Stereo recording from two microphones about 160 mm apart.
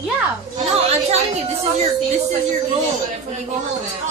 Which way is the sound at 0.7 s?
40° right (ahead or behind).